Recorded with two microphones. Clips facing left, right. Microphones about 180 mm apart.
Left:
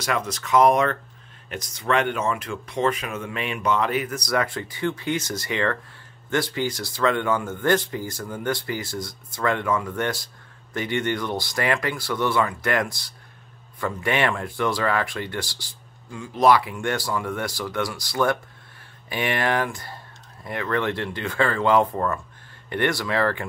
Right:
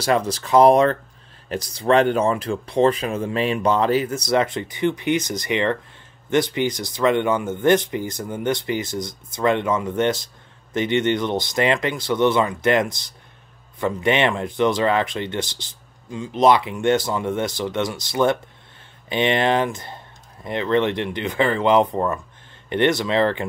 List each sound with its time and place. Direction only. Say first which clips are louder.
0.0 s speech: right 6 dB; 30° right (ahead or behind)